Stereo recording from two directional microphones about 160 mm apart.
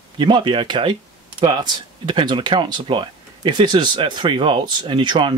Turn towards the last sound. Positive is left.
turn(degrees=-30)  # may be behind; listen again after turning